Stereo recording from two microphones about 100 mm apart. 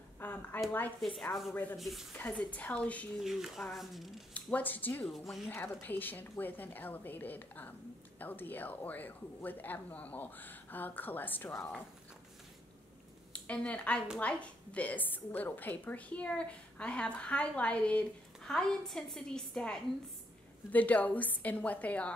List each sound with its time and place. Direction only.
0.2 s a sound: 20° left (ahead or behind)
1.0 s speech: centre (ahead or behind)
1.5 s a woman's voice: 15° left (ahead or behind)
1.8 s speech: centre (ahead or behind)
2.1 s a woman's voice: 15° left (ahead or behind)
3.2 s speech: 5° right (ahead or behind)
4.3 s speech: 15° left (ahead or behind)
5.0 s speech: centre (ahead or behind)
5.5 s a woman's voice: 20° left (ahead or behind)
13.3 s a woman's voice: 10° left (ahead or behind)